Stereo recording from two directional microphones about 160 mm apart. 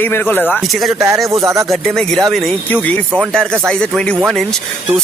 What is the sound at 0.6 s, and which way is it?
Speech, centre (ahead or behind).